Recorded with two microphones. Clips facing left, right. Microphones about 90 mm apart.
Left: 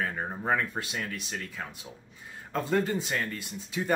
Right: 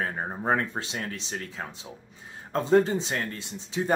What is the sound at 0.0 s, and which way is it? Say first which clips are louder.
Speech: right 2 dB; 25° right (ahead or behind).